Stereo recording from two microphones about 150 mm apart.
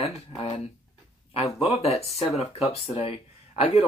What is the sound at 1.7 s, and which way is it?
Speech, 40° left (ahead or behind).